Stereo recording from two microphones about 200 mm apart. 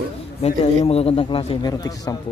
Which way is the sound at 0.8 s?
30° left (ahead or behind).